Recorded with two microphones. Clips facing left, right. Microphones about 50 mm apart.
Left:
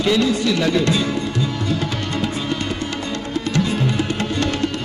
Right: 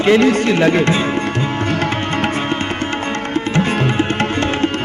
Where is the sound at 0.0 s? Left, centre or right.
Right.